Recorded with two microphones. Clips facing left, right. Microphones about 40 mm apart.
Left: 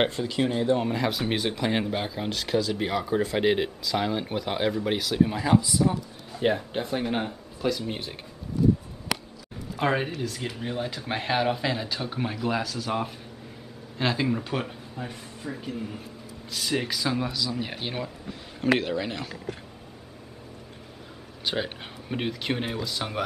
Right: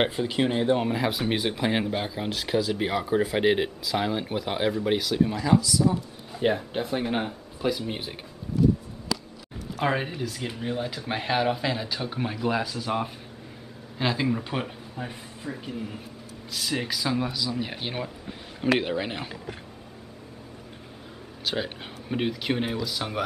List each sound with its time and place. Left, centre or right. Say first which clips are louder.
0.0 s speech: right 1 dB; centre
0.8 s speech: right 1 dB; centre
5.2 s speech: left 1 dB; centre
5.5 s speech: even; left
6.3 s speech: even; centre
9.8 s speech: left 1 dB; centre
18.8 s speech: right 1 dB; centre
21.5 s speech: even; centre